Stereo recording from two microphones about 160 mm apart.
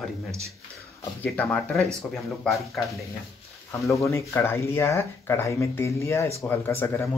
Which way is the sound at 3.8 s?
20° left (ahead or behind).